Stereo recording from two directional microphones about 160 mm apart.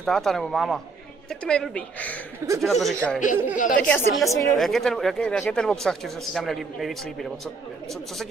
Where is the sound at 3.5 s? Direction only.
55° left (ahead or behind).